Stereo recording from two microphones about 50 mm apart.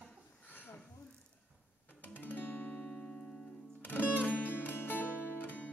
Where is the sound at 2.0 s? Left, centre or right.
Left.